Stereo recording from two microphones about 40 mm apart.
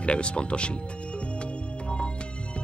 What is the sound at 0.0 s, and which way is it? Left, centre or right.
Speech, left.